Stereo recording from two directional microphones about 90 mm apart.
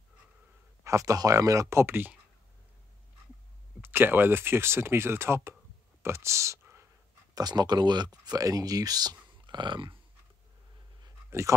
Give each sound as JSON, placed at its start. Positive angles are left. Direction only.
{"t": 0.8, "sound": "speech", "side_deg": -35}
{"t": 3.8, "sound": "speech", "side_deg": -25}
{"t": 7.3, "sound": "speech", "side_deg": -50}
{"t": 11.2, "sound": "speech", "side_deg": -30}